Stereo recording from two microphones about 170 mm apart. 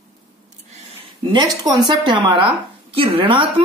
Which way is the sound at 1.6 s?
25° right (ahead or behind).